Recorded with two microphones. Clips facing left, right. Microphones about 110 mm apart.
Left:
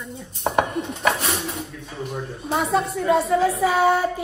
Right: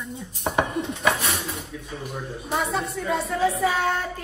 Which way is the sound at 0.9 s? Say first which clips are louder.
Left 2 dB; 30° left (ahead or behind).